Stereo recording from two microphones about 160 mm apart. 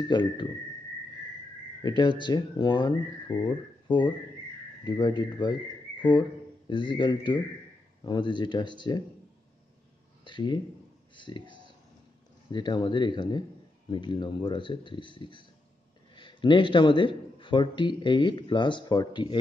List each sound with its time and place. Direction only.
0.1 s a man's voice: 30° left (ahead or behind)
1.8 s a man's voice: 25° left (ahead or behind)
6.7 s a man's voice: 30° left (ahead or behind)
10.2 s a sound: 30° left (ahead or behind)
11.1 s a man's voice: 30° left (ahead or behind)